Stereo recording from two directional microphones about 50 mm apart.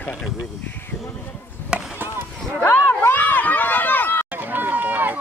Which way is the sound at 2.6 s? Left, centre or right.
Left.